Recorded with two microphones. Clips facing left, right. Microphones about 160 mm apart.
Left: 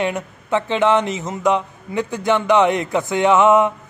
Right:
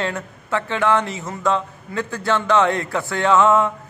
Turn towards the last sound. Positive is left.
turn(degrees=20)  # may be behind; listen again after turning